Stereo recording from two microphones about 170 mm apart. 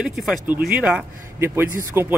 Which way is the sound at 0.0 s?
Centre (ahead or behind).